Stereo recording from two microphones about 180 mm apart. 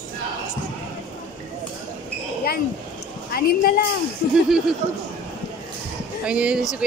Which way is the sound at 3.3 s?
60° left (ahead or behind).